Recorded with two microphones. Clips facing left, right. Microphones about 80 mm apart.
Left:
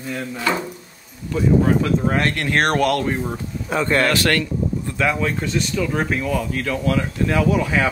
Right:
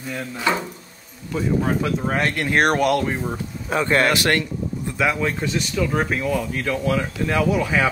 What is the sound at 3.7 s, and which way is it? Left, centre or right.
Speech, centre.